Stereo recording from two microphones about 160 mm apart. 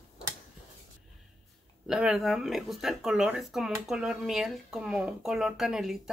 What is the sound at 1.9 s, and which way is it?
Speech, 5° right (ahead or behind).